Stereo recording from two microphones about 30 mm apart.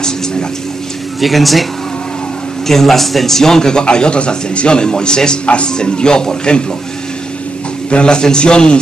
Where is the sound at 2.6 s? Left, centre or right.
Centre.